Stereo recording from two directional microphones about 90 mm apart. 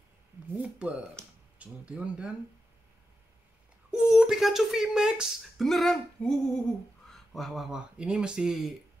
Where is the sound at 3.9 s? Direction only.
5° right (ahead or behind).